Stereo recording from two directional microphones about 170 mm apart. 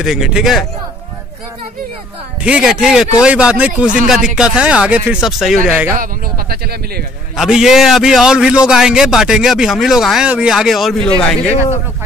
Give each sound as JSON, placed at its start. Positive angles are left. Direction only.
{"t": 0.0, "sound": "a man's voice", "side_deg": 0}
{"t": 2.4, "sound": "a man's voice", "side_deg": -5}
{"t": 5.9, "sound": "speech", "side_deg": -60}
{"t": 7.3, "sound": "a man's voice", "side_deg": -5}